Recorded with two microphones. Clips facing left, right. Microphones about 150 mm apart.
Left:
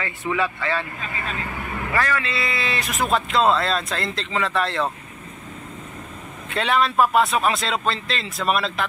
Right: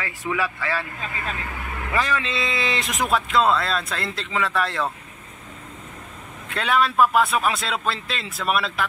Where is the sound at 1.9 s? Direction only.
20° right (ahead or behind).